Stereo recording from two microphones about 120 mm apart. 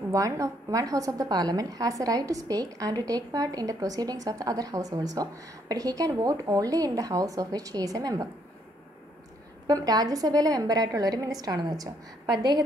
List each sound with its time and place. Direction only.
0.1 s a woman's voice: 30° right (ahead or behind)
9.7 s a woman's voice: 30° right (ahead or behind)